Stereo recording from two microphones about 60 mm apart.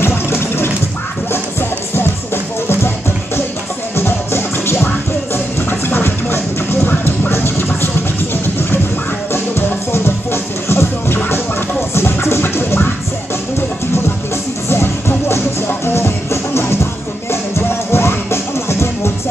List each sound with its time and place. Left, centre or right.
0.0 s a sound: left
2.0 s music: left
3.9 s music: left
9.3 s music: left
14.7 s music: left